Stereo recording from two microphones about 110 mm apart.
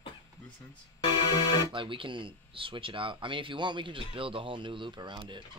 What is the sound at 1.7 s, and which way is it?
Speech, 50° right (ahead or behind).